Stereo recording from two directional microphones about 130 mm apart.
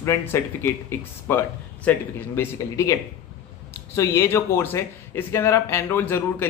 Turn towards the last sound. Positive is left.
turn(degrees=15)  # may be behind; listen again after turning